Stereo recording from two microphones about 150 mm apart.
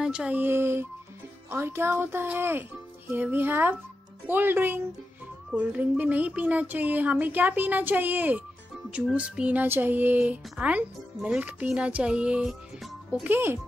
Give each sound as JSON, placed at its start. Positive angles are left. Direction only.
{"t": 0.0, "sound": "music", "side_deg": -5}